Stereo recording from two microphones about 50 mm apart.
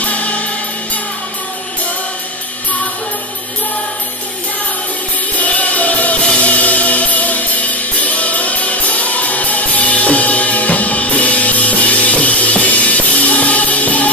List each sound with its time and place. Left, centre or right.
0.0 s music: left
5.4 s music: left